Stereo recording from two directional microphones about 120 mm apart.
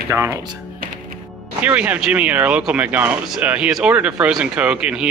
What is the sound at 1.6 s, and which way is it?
Speech, 10° right (ahead or behind).